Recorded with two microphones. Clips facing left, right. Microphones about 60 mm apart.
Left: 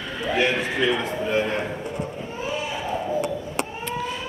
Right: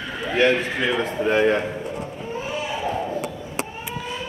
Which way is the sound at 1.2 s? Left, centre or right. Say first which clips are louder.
Right 6 dB; right.